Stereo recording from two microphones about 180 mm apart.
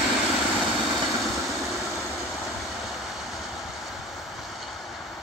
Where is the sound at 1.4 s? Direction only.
Centre (ahead or behind).